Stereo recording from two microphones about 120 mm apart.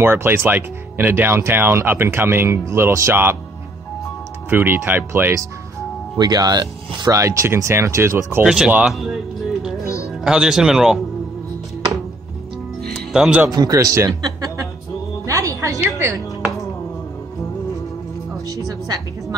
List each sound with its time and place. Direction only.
0.0 s speech: 20° right (ahead or behind)
4.5 s speech: 15° right (ahead or behind)
6.1 s speech: 35° right (ahead or behind)
8.5 s music: 5° right (ahead or behind)
9.8 s music: 25° left (ahead or behind)
10.2 s speech: 5° right (ahead or behind)
12.9 s music: 5° right (ahead or behind)
13.5 s speech: 30° right (ahead or behind)
15.2 s music: 25° right (ahead or behind)
18.5 s speech: 30° right (ahead or behind)